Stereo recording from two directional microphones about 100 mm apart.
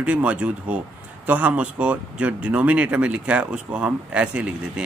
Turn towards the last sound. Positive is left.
turn(degrees=-10)  # may be behind; listen again after turning